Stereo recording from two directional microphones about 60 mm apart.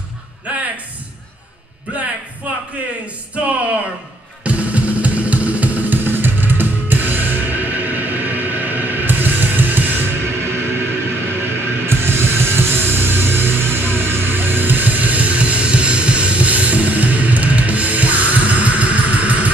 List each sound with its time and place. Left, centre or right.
4.4 s music: right